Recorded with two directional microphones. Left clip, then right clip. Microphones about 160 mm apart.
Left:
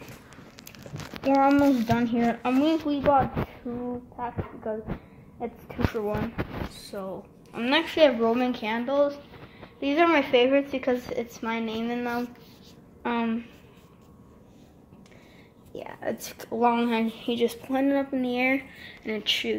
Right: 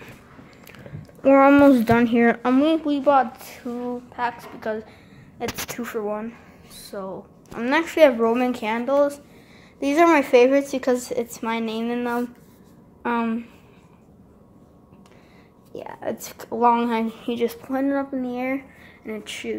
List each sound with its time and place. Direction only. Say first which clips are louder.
1.2 s speech: right 7 dB; 35° right (ahead or behind)
4.2 s a woman's voice: right 9 dB; 20° right (ahead or behind)
5.9 s a woman's voice: right 1 dB; centre (ahead or behind)
15.7 s a woman's voice: right 3 dB; 5° right (ahead or behind)